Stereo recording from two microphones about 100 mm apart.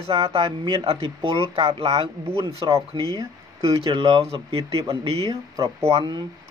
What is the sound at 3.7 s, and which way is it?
Speech, 65° right (ahead or behind).